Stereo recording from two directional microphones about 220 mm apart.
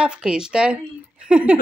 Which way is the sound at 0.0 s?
5° right (ahead or behind).